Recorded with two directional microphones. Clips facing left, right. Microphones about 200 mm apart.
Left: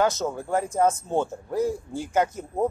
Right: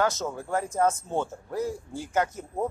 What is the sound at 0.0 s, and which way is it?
A man's voice, 20° left (ahead or behind).